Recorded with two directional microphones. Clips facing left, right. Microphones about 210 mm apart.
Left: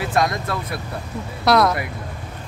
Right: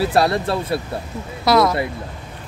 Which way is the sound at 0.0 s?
35° right (ahead or behind).